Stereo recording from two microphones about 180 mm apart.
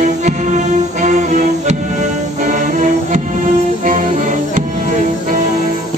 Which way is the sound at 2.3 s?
45° right (ahead or behind).